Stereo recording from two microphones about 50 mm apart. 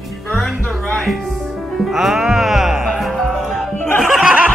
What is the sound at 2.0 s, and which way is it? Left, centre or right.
Music, centre.